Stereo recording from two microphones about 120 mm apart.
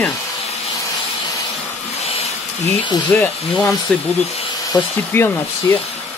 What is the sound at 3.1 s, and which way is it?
Speech, 15° left (ahead or behind).